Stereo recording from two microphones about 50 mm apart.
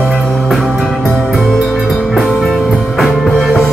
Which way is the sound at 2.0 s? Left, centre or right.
Centre.